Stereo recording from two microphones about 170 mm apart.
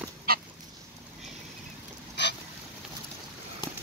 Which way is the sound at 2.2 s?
90° left.